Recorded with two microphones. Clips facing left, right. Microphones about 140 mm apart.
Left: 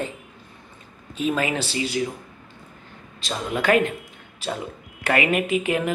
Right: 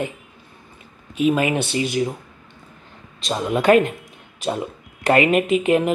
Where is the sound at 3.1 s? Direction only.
20° right (ahead or behind).